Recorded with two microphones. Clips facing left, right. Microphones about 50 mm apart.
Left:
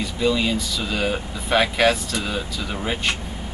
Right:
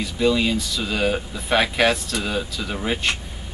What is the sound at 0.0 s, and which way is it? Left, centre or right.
Speech, centre.